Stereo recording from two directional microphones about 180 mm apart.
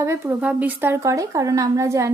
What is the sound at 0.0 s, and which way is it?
A woman's voice, 15° right (ahead or behind).